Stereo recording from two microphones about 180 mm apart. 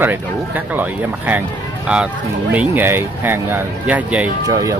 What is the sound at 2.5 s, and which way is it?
Speech, 10° right (ahead or behind).